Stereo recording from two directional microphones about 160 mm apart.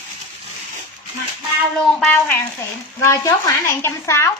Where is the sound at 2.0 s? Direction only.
10° left (ahead or behind).